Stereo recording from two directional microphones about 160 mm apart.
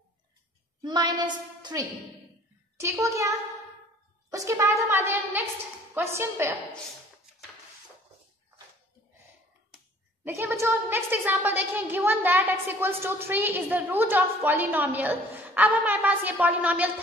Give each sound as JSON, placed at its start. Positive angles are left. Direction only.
{"t": 0.8, "sound": "a woman's voice", "side_deg": -25}
{"t": 10.2, "sound": "a woman's voice", "side_deg": -15}